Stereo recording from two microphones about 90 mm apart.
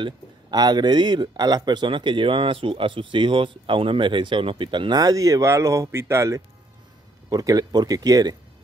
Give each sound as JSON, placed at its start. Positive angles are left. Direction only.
{"t": 0.0, "sound": "speech", "side_deg": -50}
{"t": 4.9, "sound": "speech", "side_deg": -40}
{"t": 7.2, "sound": "speech", "side_deg": -45}